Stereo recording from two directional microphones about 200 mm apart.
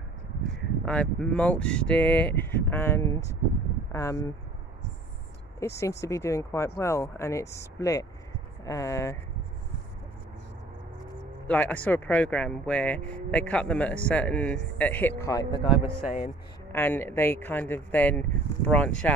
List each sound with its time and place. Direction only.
0.8 s speech: 5° left (ahead or behind)
5.8 s speech: 15° left (ahead or behind)
11.4 s speech: 5° left (ahead or behind)
16.7 s speech: 10° left (ahead or behind)